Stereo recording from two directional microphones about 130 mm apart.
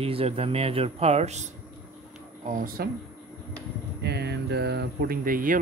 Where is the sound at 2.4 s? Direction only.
80° right.